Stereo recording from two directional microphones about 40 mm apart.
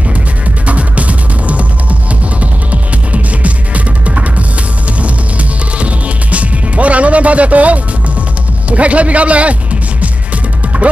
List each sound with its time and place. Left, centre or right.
0.7 s music: right
8.6 s a man's voice: right
10.7 s music: right